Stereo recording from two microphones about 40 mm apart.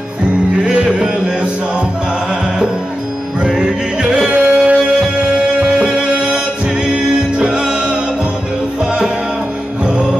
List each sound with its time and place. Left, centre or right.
0.7 s music: right
3.4 s music: centre
4.3 s music: right
5.4 s music: centre